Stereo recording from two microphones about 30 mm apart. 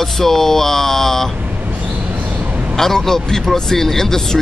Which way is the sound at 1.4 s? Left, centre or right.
Right.